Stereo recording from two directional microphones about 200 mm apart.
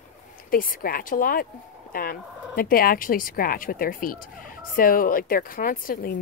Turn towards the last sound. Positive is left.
turn(degrees=45)  # may be behind; listen again after turning